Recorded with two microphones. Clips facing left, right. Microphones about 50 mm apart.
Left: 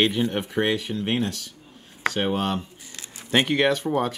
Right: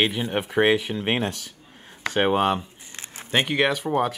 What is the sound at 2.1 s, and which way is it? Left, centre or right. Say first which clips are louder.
Speech: right 6 dB; right.